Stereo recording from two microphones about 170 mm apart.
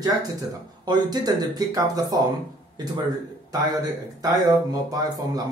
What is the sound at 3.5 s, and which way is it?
Speech, 25° right (ahead or behind).